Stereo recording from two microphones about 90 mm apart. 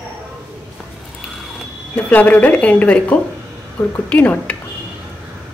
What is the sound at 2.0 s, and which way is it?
A woman's voice, 20° left (ahead or behind).